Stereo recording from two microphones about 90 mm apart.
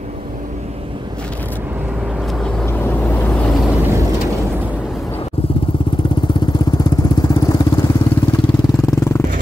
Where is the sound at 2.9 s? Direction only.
25° left (ahead or behind).